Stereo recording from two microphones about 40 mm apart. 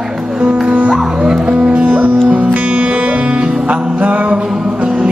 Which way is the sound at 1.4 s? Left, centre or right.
Right.